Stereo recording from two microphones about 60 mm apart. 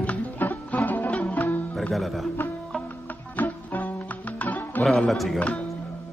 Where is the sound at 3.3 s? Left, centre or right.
Left.